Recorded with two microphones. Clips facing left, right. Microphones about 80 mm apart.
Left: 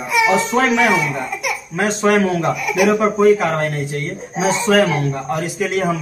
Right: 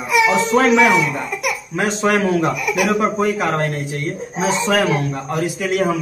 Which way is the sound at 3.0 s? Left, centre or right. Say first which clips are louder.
Left 5 dB; centre.